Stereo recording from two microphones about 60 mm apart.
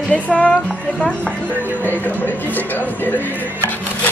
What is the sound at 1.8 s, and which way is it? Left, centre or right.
A man's voice, left.